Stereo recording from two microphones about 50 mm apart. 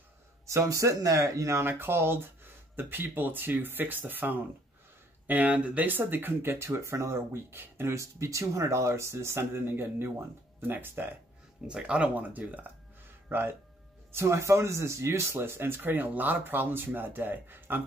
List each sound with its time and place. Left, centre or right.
0.5 s speech: right
1.6 s speech: right
7.6 s speech: right
7.9 s speech: right
11.6 s speech: centre
12.3 s speech: right
13.3 s speech: right
14.1 s speech: right